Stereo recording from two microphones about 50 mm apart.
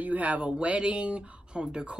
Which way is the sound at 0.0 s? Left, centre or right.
Right.